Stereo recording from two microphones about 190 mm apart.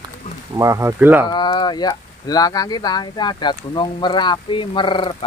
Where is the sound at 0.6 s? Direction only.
15° right (ahead or behind).